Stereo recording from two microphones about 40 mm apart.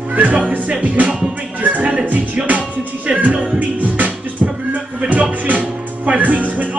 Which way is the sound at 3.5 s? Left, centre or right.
Right.